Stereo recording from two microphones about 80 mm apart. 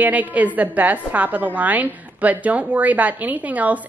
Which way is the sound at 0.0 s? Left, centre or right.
Right.